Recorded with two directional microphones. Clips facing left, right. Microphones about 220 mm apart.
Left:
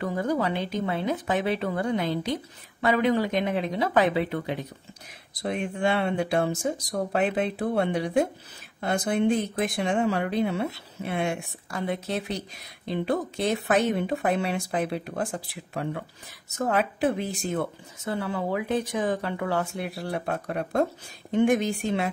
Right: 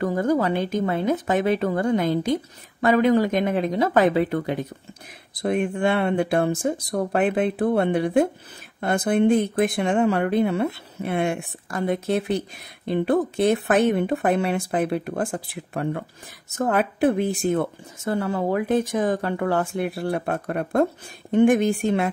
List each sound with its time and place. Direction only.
0.0 s speech: 45° right (ahead or behind)
18.0 s speech: 45° right (ahead or behind)